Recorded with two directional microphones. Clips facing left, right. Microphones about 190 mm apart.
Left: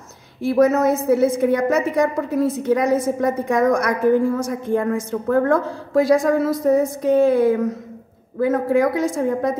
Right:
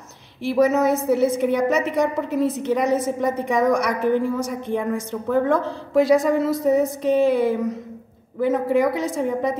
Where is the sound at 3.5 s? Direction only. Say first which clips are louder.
Left 1 dB; centre (ahead or behind).